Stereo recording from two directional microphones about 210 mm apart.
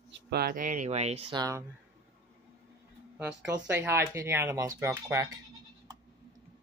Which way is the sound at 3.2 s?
10° right (ahead or behind).